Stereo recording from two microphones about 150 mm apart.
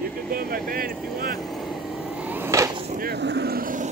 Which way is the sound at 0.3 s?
75° right (ahead or behind).